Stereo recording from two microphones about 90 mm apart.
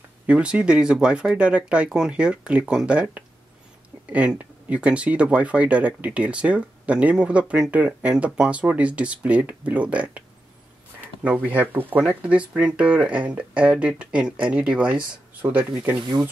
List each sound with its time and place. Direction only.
0.3 s speech: 15° right (ahead or behind)
11.2 s speech: 15° right (ahead or behind)